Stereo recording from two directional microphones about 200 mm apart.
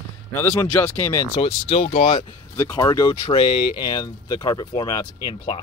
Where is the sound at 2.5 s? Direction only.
20° left (ahead or behind).